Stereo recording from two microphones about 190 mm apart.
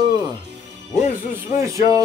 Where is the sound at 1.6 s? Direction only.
15° right (ahead or behind).